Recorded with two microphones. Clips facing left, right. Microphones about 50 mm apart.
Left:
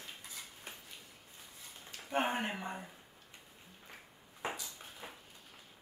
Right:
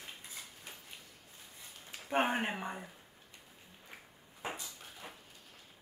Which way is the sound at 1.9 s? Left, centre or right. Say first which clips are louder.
Right 2 dB; right.